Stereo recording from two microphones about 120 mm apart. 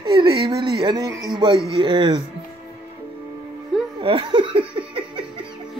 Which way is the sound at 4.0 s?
45° right (ahead or behind).